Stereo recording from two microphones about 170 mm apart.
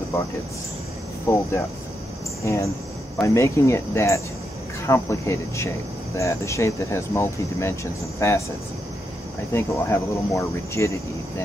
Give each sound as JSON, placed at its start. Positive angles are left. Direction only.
{"t": 1.3, "sound": "speech", "side_deg": 15}
{"t": 9.5, "sound": "speech", "side_deg": 15}